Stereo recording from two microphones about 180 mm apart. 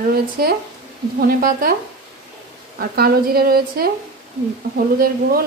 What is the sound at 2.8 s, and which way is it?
Speech, 55° right (ahead or behind).